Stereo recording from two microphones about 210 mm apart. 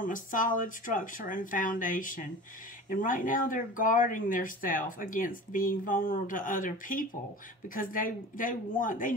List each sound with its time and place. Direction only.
0.0 s speech: 40° left (ahead or behind)